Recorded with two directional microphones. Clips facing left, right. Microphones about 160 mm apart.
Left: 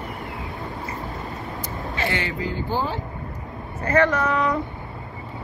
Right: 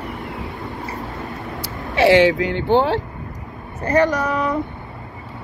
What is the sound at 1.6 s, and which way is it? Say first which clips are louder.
Speech: right 13 dB; 80° right.